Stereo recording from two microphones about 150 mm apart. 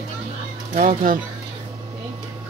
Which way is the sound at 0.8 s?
65° right (ahead or behind).